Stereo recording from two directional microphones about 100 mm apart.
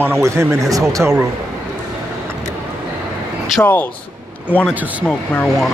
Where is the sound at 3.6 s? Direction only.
20° left (ahead or behind).